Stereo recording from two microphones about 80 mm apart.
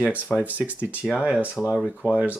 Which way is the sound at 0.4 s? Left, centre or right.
Centre.